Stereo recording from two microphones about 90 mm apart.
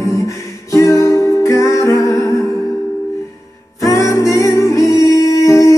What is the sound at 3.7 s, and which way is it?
Music, 40° left (ahead or behind).